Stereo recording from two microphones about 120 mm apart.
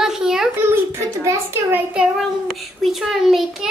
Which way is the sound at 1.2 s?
20° right (ahead or behind).